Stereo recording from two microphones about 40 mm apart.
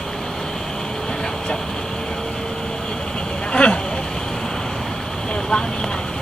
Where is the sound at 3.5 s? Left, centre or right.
Left.